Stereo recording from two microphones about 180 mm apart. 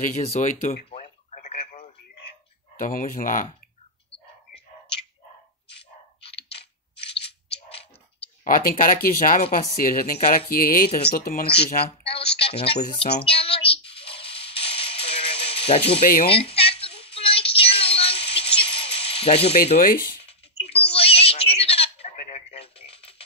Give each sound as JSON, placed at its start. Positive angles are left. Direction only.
{"t": 0.0, "sound": "speech", "side_deg": 40}
{"t": 0.8, "sound": "telephone", "side_deg": 35}
{"t": 2.8, "sound": "speech", "side_deg": 50}
{"t": 6.5, "sound": "crushing", "side_deg": 70}
{"t": 8.5, "sound": "speech", "side_deg": 50}
{"t": 11.4, "sound": "speech", "side_deg": 30}
{"t": 12.0, "sound": "a sound", "side_deg": 30}
{"t": 19.8, "sound": "speech", "side_deg": 55}
{"t": 20.2, "sound": "a sound", "side_deg": 35}